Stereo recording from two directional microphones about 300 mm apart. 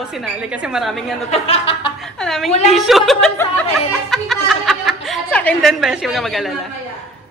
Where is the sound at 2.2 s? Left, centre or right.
Centre.